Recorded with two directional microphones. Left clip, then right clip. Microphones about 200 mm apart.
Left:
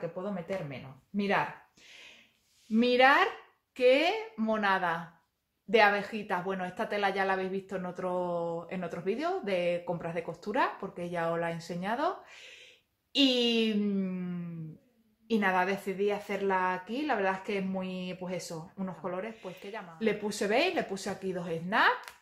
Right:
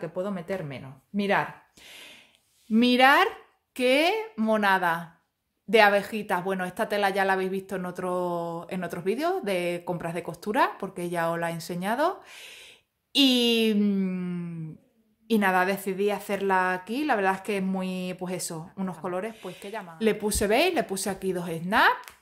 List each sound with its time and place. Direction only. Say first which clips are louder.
0.0 s speech: right 5 dB; 55° right (ahead or behind)
1.9 s a sound: right 6 dB; 55° right (ahead or behind)
2.7 s speech: right 4 dB; 50° right (ahead or behind)